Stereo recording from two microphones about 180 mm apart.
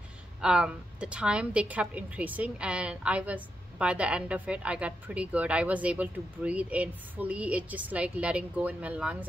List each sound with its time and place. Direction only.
0.4 s a woman's voice: 5° right (ahead or behind)